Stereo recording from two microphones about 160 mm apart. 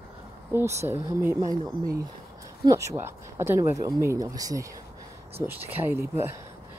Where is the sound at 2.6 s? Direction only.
20° right (ahead or behind).